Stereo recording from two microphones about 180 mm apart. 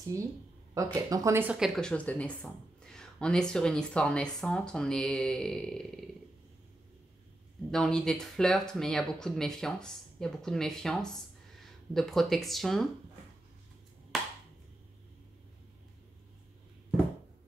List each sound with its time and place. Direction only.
0.1 s speech: 15° right (ahead or behind); by 5.9 s centre (ahead or behind)
7.7 s speech: 5° left (ahead or behind)
14.1 s clapping: centre (ahead or behind)